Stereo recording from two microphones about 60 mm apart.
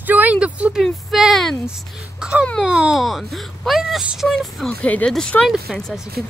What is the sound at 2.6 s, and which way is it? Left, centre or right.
Speech, centre.